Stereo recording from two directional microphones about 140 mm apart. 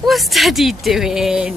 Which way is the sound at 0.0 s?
Centre (ahead or behind).